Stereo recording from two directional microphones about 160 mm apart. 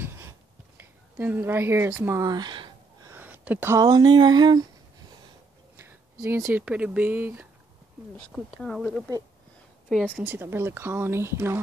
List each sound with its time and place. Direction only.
0.0 s a sound: 15° right (ahead or behind)
3.1 s speech: 10° right (ahead or behind); by 4.6 s 25° right (ahead or behind)
5.8 s a sound: 15° right (ahead or behind)
6.6 s speech: 5° right (ahead or behind)
8.2 s speech: 5° left (ahead or behind)
10.0 s speech: 10° right (ahead or behind)